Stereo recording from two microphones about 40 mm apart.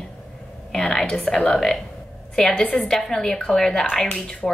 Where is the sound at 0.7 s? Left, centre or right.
Centre.